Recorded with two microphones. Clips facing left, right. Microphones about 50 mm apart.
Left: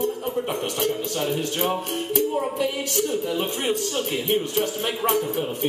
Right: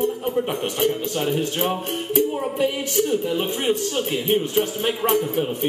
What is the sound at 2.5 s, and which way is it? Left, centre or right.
Speech, right.